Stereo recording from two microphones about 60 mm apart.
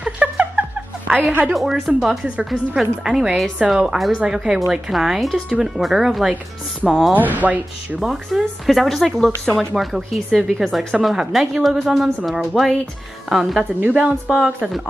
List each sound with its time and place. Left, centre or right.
0.0 s a sound: right
1.5 s speech: centre
7.2 s speech: right
8.0 s speech: centre
13.7 s a woman's voice: right
14.3 s speech: centre